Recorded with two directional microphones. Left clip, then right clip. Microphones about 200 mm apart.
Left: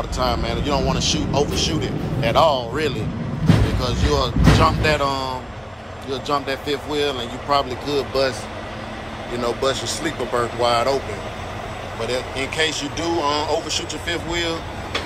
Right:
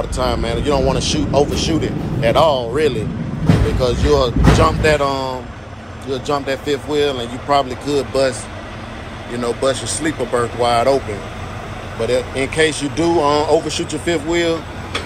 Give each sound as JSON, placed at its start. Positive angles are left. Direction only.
{"t": 0.2, "sound": "speech", "side_deg": 20}
{"t": 3.8, "sound": "speech", "side_deg": 15}
{"t": 12.0, "sound": "speech", "side_deg": 15}